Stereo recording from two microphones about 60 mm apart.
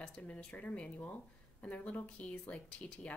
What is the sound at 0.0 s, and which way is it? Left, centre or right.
Speech, centre.